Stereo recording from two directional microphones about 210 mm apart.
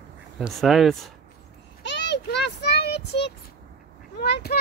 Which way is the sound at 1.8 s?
55° left (ahead or behind).